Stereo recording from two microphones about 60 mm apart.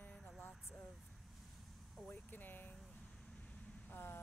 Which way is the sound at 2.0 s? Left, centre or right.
Left.